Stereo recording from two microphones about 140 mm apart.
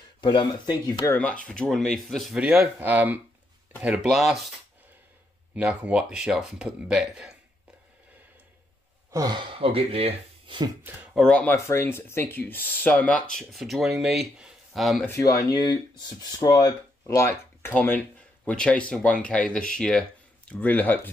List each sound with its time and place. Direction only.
0.2 s speech: 35° left (ahead or behind)
1.1 s speech: 10° left (ahead or behind)
5.5 s speech: 10° right (ahead or behind)
9.1 s speech: 30° right (ahead or behind); by 10.6 s 45° right (ahead or behind)
10.8 s speech: 10° right (ahead or behind)
11.1 s speech: 5° left (ahead or behind)
11.5 s speech: 20° left (ahead or behind); by 15.0 s centre (ahead or behind)
15.0 s speech: 20° left (ahead or behind)